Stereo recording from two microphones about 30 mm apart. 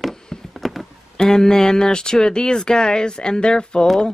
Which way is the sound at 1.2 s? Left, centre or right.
Left.